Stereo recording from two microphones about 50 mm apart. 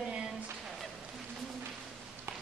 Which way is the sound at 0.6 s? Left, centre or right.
Centre.